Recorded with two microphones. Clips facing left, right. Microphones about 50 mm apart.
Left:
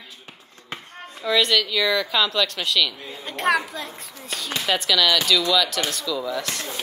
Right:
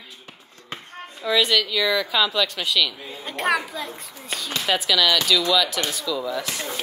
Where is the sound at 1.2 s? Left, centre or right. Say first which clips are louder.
Even; centre.